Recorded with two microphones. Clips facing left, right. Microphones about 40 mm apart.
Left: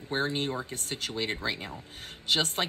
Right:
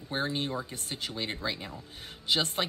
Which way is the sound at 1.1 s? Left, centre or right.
Left.